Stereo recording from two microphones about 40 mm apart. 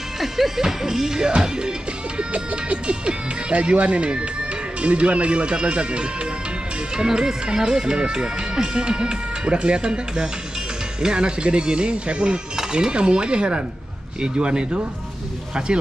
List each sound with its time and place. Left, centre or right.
0.2 s speech: centre; by 6.0 s right
7.0 s speech: centre